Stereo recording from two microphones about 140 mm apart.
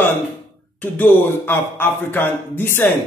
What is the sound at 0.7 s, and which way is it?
Speech, 15° left (ahead or behind).